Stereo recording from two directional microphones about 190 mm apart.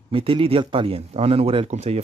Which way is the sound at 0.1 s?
30° right (ahead or behind).